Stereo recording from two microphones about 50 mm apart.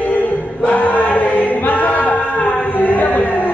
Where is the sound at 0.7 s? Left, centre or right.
Left.